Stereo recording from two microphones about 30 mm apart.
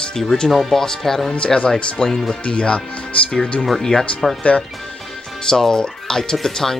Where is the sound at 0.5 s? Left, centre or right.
Centre.